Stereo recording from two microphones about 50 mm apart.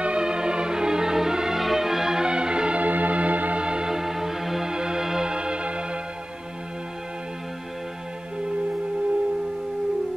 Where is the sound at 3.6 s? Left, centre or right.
Centre.